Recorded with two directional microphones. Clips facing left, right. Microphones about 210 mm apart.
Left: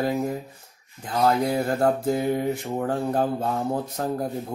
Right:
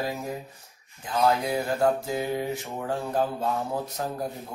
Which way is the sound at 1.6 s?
55° left (ahead or behind).